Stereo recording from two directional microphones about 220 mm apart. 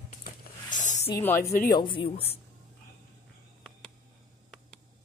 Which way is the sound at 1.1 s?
10° left (ahead or behind).